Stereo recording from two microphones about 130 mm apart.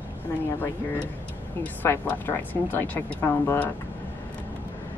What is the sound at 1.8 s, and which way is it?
Speech, 15° left (ahead or behind).